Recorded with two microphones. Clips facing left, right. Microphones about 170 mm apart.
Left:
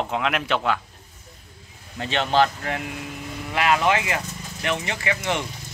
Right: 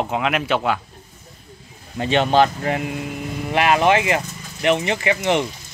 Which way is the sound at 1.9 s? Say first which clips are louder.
Right 4 dB; 15° right (ahead or behind).